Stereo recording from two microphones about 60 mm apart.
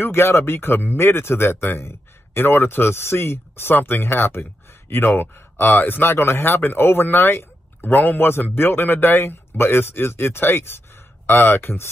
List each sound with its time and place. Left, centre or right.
0.0 s speech: left
7.8 s speech: left